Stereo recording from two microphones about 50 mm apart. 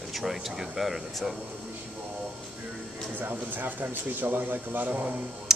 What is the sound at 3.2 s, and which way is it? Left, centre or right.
Speech, right.